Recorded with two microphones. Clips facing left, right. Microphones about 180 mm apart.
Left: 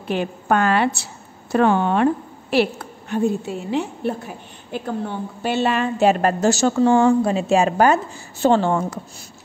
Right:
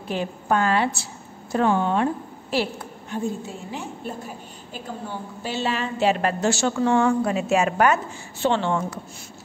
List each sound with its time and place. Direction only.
0.1 s a woman's voice: 70° left (ahead or behind); by 9.0 s 40° left (ahead or behind)